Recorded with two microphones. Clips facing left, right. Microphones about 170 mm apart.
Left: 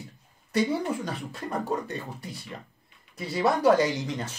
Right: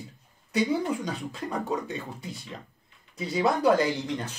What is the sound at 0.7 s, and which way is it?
Speech, centre (ahead or behind).